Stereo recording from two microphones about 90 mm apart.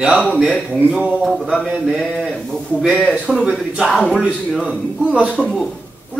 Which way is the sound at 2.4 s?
Centre (ahead or behind).